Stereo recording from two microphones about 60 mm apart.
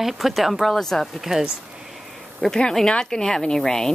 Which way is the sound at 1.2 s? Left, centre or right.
Centre.